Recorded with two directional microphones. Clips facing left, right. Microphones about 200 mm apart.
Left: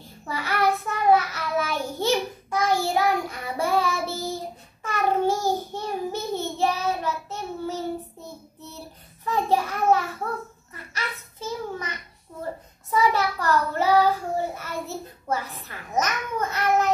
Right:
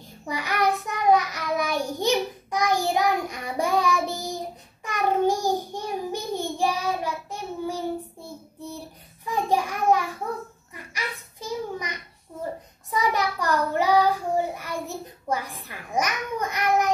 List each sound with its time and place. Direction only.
0.3 s child singing: 15° right (ahead or behind)
9.2 s a sound: 15° right (ahead or behind)
12.9 s child singing: 15° right (ahead or behind)